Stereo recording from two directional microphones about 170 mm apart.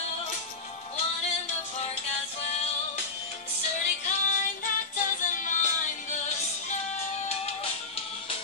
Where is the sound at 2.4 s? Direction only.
40° left (ahead or behind).